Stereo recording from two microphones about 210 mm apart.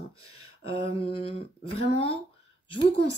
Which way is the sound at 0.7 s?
25° left (ahead or behind).